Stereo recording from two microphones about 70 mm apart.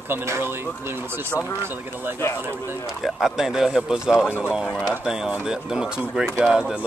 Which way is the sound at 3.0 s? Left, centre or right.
Centre.